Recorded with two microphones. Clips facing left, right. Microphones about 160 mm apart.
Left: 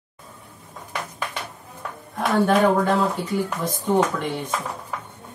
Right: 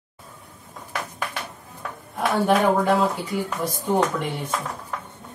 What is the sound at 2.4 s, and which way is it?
Speech, 5° right (ahead or behind).